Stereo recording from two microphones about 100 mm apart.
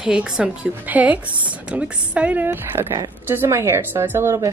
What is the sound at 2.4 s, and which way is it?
A woman's voice, 25° right (ahead or behind).